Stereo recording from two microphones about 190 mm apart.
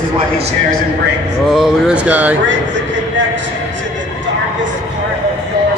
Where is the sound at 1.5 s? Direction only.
Centre (ahead or behind).